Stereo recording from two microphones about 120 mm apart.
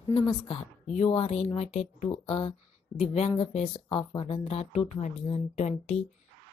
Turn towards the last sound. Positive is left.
turn(degrees=70)  # may be behind; listen again after turning